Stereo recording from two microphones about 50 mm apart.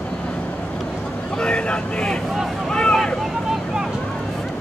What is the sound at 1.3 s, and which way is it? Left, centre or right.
Vehicle, left.